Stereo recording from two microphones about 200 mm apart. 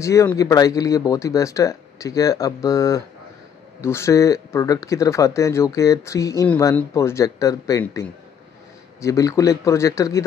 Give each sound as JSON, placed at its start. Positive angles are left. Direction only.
{"t": 0.0, "sound": "speech", "side_deg": 15}